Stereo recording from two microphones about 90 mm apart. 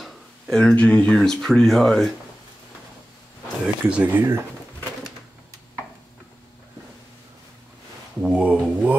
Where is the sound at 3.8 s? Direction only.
15° right (ahead or behind).